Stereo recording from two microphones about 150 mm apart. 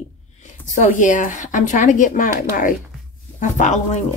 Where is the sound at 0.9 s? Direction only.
60° left (ahead or behind).